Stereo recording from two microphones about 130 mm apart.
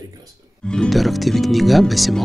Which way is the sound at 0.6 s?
5° left (ahead or behind).